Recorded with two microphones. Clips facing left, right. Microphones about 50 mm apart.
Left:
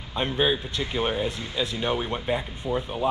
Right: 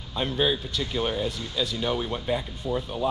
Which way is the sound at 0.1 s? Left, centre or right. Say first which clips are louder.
Left 1 dB; left.